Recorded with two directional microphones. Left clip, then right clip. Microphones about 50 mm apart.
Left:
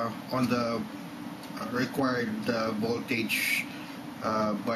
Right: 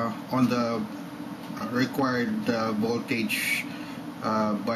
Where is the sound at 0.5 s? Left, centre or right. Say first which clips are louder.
Right 2 dB; left.